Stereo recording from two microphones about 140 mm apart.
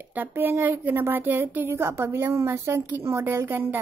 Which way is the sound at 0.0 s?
15° right (ahead or behind).